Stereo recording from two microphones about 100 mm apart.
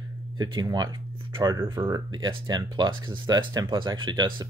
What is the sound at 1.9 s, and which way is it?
Speech, 45° right (ahead or behind).